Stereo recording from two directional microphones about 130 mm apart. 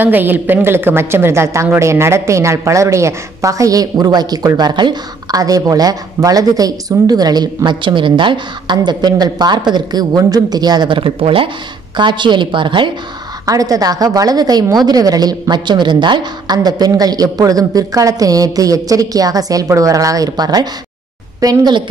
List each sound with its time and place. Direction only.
0.0 s a woman's voice: 15° right (ahead or behind); by 12.9 s 40° right (ahead or behind)
13.5 s a woman's voice: 25° right (ahead or behind)